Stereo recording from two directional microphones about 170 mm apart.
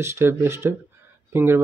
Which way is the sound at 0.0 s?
15° right (ahead or behind).